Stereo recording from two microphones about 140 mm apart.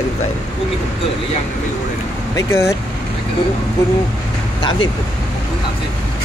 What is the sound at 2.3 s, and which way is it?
Speech, 20° left (ahead or behind).